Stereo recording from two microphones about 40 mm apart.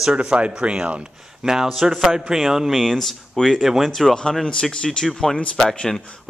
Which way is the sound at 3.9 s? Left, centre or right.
Centre.